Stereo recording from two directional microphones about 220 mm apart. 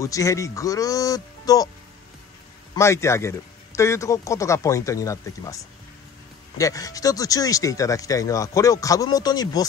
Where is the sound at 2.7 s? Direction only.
10° left (ahead or behind).